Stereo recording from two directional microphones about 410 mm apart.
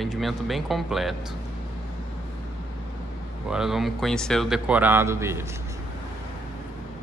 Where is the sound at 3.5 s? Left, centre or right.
Centre.